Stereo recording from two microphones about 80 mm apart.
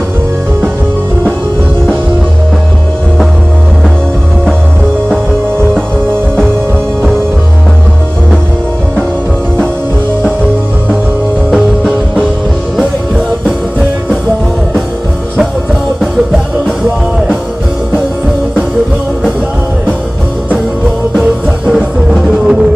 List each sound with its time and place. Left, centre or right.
11.5 s music: centre
21.2 s music: centre